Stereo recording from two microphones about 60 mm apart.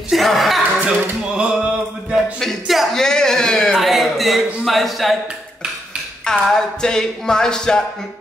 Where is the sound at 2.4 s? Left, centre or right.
Centre.